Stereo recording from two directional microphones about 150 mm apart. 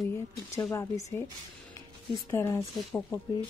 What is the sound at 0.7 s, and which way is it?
Speech, 20° left (ahead or behind).